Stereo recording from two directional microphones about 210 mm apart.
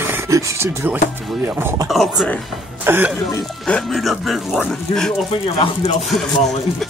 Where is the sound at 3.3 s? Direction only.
10° left (ahead or behind).